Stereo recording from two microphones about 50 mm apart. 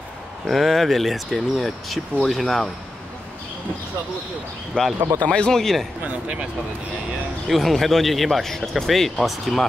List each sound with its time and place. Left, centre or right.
0.5 s speech: centre
4.7 s speech: centre
5.6 s speech: centre
6.0 s speech: right
7.4 s speech: centre